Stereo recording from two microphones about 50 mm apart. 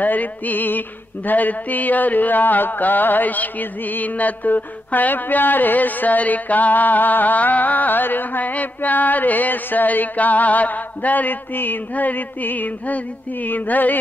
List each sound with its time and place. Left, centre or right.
0.0 s music: left